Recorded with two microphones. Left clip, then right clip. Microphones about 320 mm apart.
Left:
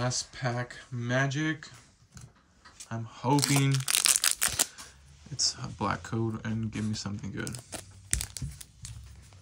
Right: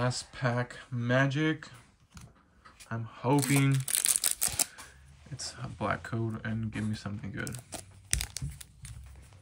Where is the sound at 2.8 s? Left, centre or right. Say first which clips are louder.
Even; centre.